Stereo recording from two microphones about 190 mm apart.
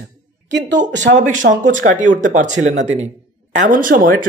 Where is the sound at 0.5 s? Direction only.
70° right (ahead or behind).